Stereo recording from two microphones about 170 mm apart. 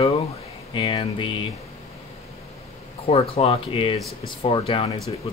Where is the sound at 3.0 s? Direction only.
35° left (ahead or behind).